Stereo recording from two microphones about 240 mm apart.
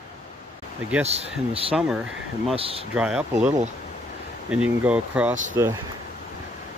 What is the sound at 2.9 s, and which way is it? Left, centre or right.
Speech, centre.